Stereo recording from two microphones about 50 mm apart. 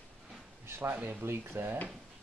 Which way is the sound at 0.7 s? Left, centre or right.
Right.